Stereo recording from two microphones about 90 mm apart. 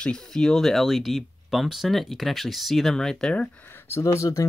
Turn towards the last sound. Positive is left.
turn(degrees=35)  # may be behind; listen again after turning